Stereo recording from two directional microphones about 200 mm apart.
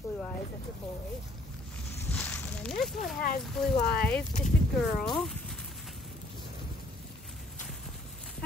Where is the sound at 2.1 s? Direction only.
5° left (ahead or behind).